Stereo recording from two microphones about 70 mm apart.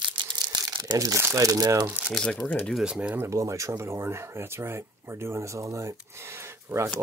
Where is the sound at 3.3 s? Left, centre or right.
Right.